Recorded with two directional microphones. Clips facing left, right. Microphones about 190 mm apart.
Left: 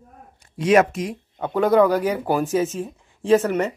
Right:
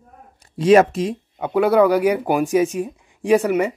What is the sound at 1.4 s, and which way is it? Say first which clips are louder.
Speech: right 1 dB; 10° right (ahead or behind).